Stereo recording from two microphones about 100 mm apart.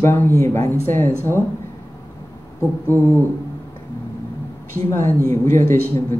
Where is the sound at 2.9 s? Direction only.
25° left (ahead or behind).